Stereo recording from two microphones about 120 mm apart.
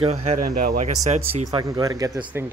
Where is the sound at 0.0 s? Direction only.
65° right (ahead or behind).